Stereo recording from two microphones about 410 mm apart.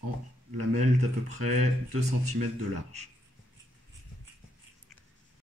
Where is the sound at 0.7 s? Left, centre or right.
Centre.